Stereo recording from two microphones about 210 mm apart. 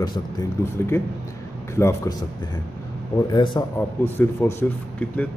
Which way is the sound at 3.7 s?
10° left (ahead or behind).